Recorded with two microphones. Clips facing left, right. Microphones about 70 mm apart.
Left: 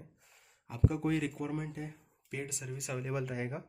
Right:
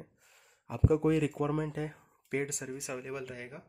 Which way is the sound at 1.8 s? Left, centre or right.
Right.